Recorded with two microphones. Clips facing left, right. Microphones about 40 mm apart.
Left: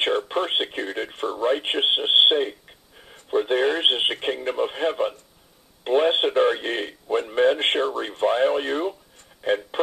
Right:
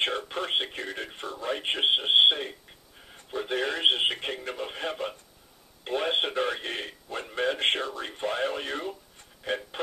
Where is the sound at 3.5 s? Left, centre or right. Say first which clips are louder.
Left 3 dB; left.